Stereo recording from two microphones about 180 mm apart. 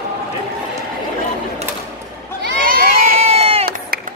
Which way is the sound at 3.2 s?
35° right (ahead or behind).